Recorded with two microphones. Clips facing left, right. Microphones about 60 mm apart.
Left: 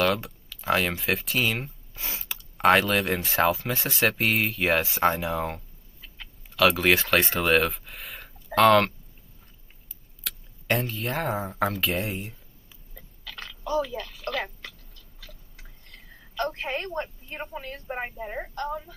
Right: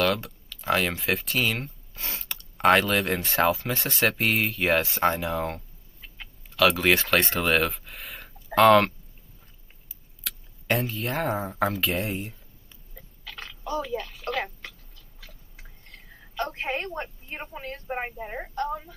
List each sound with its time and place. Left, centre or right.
0.0 s speech: centre
10.2 s speech: centre
13.3 s a sound: centre
17.7 s speech: centre